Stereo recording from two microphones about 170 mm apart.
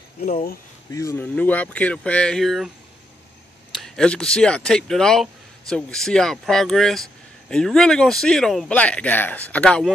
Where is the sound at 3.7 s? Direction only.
5° left (ahead or behind).